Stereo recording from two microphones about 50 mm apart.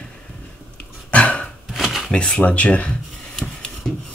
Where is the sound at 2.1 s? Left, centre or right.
Centre.